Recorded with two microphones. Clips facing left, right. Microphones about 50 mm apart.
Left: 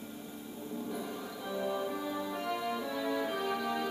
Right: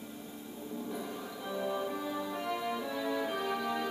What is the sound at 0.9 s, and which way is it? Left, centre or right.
Music, centre.